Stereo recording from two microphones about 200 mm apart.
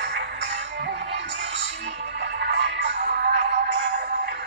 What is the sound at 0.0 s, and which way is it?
Music, 60° right (ahead or behind).